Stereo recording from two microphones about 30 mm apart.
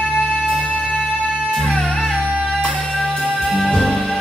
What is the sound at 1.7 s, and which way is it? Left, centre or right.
Music, left.